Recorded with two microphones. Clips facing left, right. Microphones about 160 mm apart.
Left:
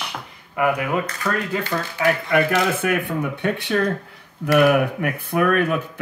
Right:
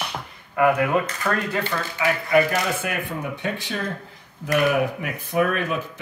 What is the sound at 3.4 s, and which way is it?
Speech, 60° left (ahead or behind).